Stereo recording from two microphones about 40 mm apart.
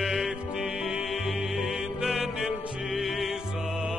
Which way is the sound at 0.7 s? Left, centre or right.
Centre.